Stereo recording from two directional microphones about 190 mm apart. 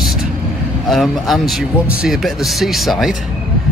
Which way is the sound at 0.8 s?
Centre (ahead or behind).